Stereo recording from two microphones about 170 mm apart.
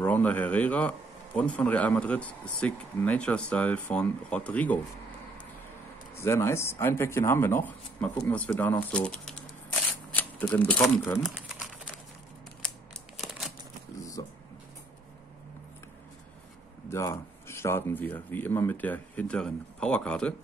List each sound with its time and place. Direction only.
0.0 s a man's voice: 10° left (ahead or behind)
6.1 s speech: 15° left (ahead or behind); by 11.4 s centre (ahead or behind)
13.9 s a sound: 20° left (ahead or behind)
16.9 s a man's voice: 15° left (ahead or behind)